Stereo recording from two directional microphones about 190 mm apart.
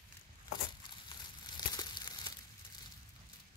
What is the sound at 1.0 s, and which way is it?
Crumpling, 20° left (ahead or behind).